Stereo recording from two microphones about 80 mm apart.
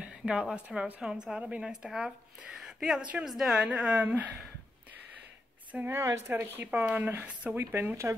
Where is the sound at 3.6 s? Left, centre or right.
Centre.